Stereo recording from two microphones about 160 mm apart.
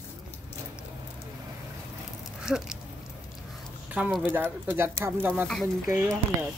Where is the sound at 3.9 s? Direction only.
10° right (ahead or behind).